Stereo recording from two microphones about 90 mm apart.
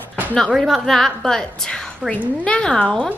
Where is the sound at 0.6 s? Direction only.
5° left (ahead or behind).